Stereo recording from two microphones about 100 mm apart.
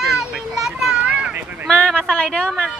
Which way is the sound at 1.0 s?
15° right (ahead or behind).